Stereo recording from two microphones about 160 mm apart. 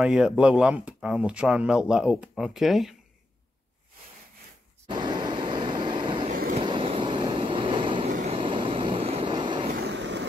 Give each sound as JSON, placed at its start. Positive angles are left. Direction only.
{"t": 0.0, "sound": "speech", "side_deg": -5}
{"t": 4.8, "sound": "vehicle", "side_deg": -25}
{"t": 6.3, "sound": "vehicle", "side_deg": -60}
{"t": 6.6, "sound": "vehicle", "side_deg": -30}
{"t": 8.1, "sound": "vehicle", "side_deg": -50}
{"t": 8.4, "sound": "vehicle", "side_deg": -30}
{"t": 9.7, "sound": "vehicle", "side_deg": -80}